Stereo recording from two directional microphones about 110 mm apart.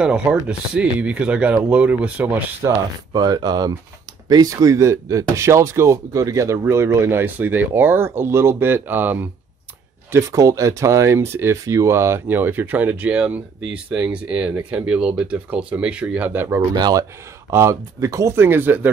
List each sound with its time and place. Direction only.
0.0 s speech: 10° right (ahead or behind)
3.1 s speech: 40° right (ahead or behind); by 9.3 s 20° right (ahead or behind)
10.1 s speech: 30° right (ahead or behind)
16.7 s speech: 40° right (ahead or behind)
17.5 s speech: 25° right (ahead or behind)